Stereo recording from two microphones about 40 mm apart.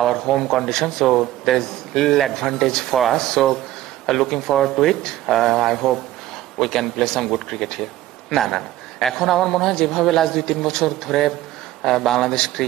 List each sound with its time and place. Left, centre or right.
0.0 s a man's voice: centre